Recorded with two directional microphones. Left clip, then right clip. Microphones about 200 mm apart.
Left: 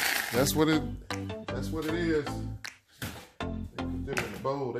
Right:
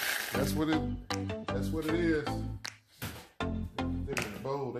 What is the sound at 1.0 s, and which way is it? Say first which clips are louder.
Music: right 1 dB; centre (ahead or behind).